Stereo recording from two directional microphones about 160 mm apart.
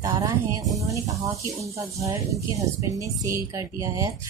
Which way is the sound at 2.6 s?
20° right (ahead or behind).